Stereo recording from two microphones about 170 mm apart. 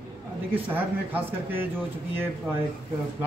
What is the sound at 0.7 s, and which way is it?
Speech, 10° right (ahead or behind).